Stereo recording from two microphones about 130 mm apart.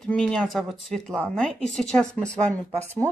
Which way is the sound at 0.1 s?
5° left (ahead or behind).